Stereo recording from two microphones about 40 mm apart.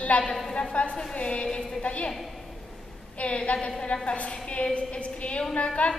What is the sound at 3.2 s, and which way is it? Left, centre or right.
A woman's voice, left.